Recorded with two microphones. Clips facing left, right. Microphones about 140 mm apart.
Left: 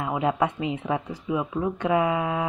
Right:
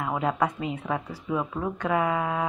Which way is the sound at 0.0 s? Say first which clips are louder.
Left 2 dB; 25° left (ahead or behind).